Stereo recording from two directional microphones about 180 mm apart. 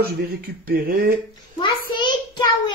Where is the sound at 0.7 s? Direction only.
55° right (ahead or behind).